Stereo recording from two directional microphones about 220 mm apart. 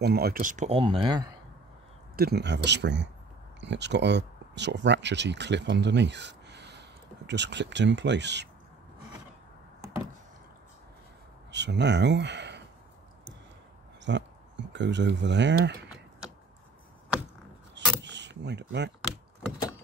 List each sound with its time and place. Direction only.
0.0 s speech: 45° right (ahead or behind); by 1.3 s 20° right (ahead or behind)
2.1 s speech: 45° right (ahead or behind)
11.5 s speech: 50° right (ahead or behind)
14.1 s speech: 50° right (ahead or behind)
18.0 s a sound: 55° right (ahead or behind)